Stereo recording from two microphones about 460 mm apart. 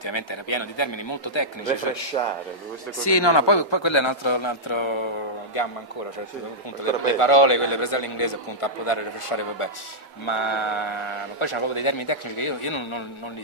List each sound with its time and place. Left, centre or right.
0.0 s a man's voice: left
2.1 s speech: centre
3.0 s a man's voice: left
6.8 s a man's voice: left